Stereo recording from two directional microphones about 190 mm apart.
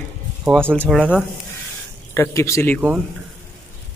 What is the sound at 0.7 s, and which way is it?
Speech, 5° left (ahead or behind).